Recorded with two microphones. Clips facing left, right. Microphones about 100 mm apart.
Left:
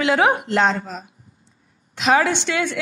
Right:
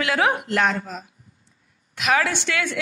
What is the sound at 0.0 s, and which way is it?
Speech, 20° left (ahead or behind).